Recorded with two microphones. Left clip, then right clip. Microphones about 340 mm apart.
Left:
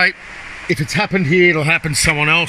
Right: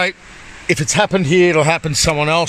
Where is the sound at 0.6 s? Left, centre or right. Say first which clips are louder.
Right 3 dB; right.